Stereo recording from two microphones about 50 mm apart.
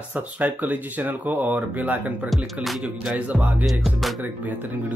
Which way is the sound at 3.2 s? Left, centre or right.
Right.